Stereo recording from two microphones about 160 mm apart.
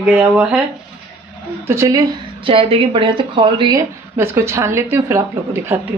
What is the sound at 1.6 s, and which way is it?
Speech, 15° right (ahead or behind).